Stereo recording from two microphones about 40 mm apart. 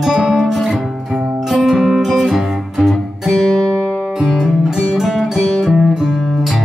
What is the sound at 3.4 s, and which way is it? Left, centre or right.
Music, centre.